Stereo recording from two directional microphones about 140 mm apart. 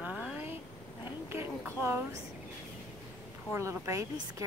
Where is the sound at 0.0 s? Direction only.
5° right (ahead or behind).